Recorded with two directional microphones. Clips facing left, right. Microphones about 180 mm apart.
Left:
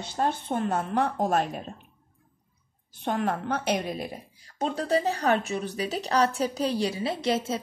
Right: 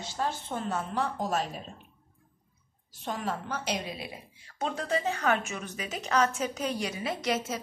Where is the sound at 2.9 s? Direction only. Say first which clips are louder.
Left 6 dB; 60° left (ahead or behind).